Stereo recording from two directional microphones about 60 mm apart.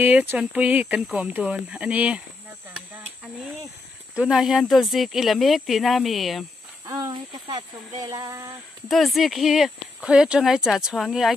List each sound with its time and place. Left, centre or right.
0.0 s speech: right
0.4 s speech: right
4.1 s speech: centre
4.4 s speech: centre
8.0 s speech: right
8.9 s speech: centre